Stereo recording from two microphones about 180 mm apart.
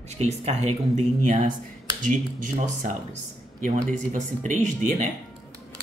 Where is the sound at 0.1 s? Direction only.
35° right (ahead or behind).